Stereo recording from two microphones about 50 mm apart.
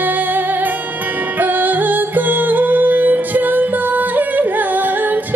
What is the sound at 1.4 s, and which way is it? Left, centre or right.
Music, right.